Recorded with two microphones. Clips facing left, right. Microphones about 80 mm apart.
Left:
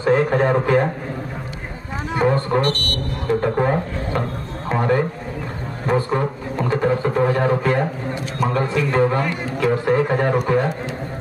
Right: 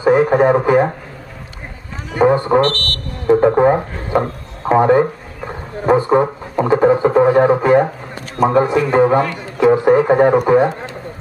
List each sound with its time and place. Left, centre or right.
0.0 s a man's voice: centre
2.1 s speech: centre
2.6 s speech: centre
3.3 s a man's voice: right
5.9 s a sound: centre
6.7 s speech: right